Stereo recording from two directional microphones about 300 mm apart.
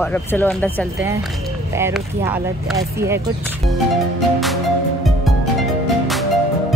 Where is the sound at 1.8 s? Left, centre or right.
Centre.